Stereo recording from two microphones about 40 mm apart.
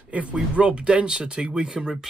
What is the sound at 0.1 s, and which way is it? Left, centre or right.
Speech, right.